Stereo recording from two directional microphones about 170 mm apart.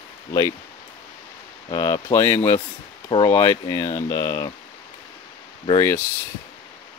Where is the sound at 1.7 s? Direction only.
20° left (ahead or behind).